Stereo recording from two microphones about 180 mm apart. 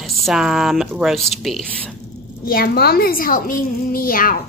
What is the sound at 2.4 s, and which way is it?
A woman's voice, 55° left (ahead or behind).